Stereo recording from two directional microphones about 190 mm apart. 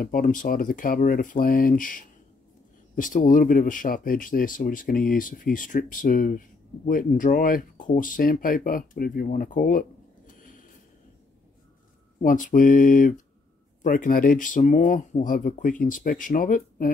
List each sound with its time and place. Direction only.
0.0 s speech: 45° left (ahead or behind)
12.2 s speech: 45° left (ahead or behind)